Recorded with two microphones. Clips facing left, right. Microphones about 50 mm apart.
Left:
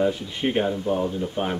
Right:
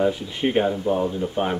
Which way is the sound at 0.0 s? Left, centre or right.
Centre.